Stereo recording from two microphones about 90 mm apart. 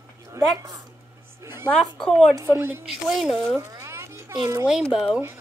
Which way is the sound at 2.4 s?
30° right (ahead or behind).